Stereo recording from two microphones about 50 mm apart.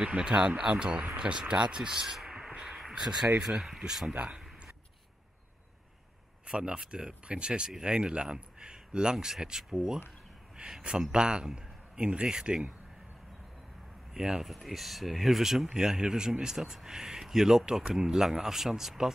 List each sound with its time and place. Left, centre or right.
0.0 s speech: right
1.8 s a sound: centre
2.9 s speech: centre
4.1 s speech: right
6.4 s a man's voice: centre
14.1 s speech: centre
14.5 s speech: centre
15.7 s speech: centre